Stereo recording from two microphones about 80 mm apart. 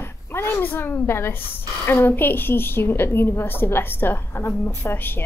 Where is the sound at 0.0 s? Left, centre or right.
Left.